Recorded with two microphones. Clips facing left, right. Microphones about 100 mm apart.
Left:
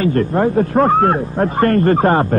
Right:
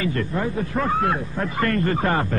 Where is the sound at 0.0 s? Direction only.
45° left (ahead or behind).